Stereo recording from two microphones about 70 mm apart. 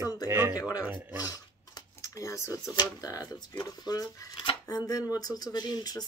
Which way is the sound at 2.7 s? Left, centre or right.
Left.